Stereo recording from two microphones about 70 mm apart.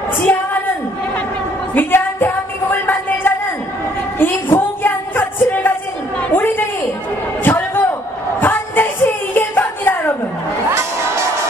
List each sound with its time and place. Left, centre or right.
0.2 s a sound: left
1.8 s music: left
6.3 s a sound: left
7.4 s slam: left
8.4 s music: left
10.7 s music: right